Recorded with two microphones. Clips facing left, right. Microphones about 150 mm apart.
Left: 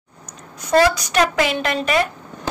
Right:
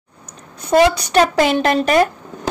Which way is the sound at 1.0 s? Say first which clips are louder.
Right 4 dB; 35° right (ahead or behind).